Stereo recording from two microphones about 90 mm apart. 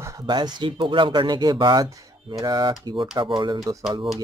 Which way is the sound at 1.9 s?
40° right (ahead or behind).